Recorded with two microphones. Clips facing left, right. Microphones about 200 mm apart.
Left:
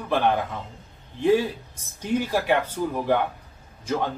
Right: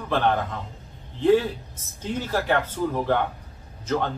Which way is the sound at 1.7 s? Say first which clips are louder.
Left 9 dB; 15° left (ahead or behind).